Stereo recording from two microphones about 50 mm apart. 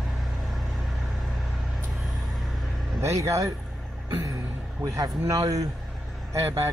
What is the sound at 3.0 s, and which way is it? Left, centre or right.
Speech, right.